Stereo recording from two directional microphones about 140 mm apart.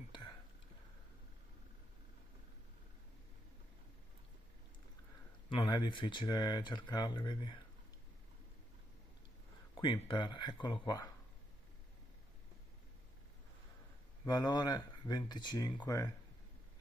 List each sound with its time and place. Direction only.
5.5 s speech: 35° left (ahead or behind)
9.8 s speech: 35° left (ahead or behind)
14.2 s speech: 30° left (ahead or behind)